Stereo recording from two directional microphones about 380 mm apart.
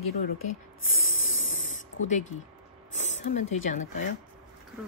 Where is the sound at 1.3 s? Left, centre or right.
Left.